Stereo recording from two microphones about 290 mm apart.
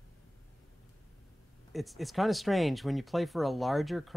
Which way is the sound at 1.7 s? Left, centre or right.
Centre.